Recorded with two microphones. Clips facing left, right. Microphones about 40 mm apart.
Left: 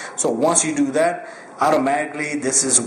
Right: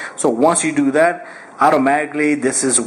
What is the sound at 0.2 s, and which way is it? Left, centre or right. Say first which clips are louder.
A man's voice: right 4 dB; centre.